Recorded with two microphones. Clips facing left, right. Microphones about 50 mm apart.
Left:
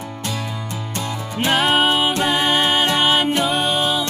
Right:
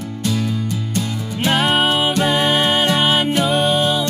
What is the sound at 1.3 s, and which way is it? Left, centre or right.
Music, centre.